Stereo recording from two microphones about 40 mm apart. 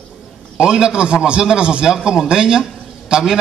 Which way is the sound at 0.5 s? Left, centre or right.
Right.